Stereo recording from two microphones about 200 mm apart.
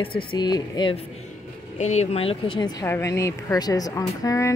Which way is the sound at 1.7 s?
35° left (ahead or behind).